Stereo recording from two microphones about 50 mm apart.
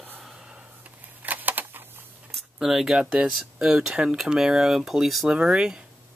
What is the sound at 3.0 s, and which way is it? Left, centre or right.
Speech, centre.